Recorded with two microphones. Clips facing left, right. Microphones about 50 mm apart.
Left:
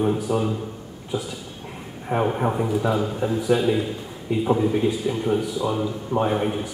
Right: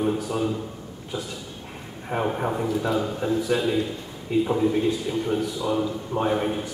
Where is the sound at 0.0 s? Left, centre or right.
Centre.